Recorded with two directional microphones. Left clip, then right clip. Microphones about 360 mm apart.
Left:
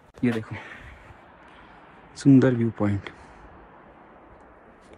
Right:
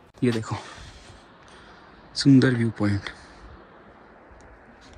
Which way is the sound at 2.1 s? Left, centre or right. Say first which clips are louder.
Even; centre.